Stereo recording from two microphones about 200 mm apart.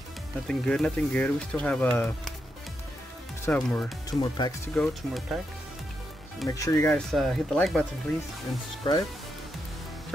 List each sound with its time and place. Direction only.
0.5 s speech: 5° left (ahead or behind)
3.4 s speech: 5° left (ahead or behind)
4.2 s speech: 20° left (ahead or behind)
4.7 s speech: centre (ahead or behind)
6.5 s speech: 15° left (ahead or behind)
7.1 s speech: centre (ahead or behind)
8.8 s speech: 25° left (ahead or behind)